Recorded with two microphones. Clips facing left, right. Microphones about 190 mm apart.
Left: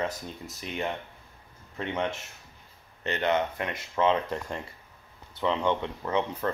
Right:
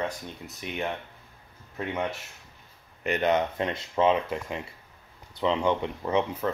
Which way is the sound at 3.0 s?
15° right (ahead or behind).